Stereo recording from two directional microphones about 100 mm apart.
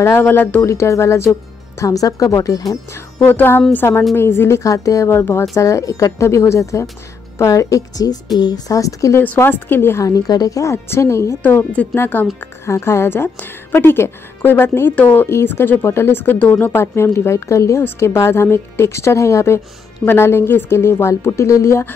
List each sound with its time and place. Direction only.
0.0 s a woman's voice: 25° left (ahead or behind)
0.6 s a woman's voice: 30° left (ahead or behind)
3.3 s a woman's voice: 20° left (ahead or behind)
9.2 s a woman's voice: 20° left (ahead or behind)
10.0 s a woman's voice: 40° left (ahead or behind)